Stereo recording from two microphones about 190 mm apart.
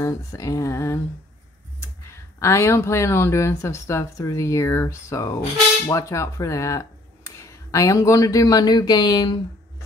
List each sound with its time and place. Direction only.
0.0 s speech: 15° left (ahead or behind)